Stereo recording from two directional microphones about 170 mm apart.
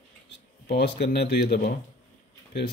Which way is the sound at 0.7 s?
75° left (ahead or behind).